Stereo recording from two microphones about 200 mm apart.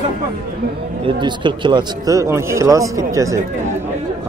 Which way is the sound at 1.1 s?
25° right (ahead or behind).